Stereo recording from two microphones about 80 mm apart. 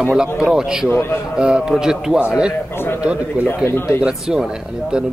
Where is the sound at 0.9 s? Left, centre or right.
Left.